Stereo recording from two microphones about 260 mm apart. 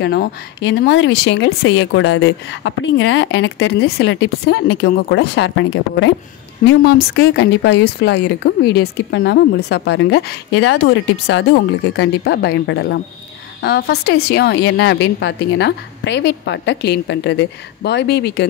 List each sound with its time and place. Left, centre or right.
0.0 s a woman's voice: left